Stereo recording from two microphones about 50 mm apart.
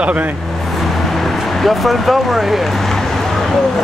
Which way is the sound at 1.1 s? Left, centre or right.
Centre.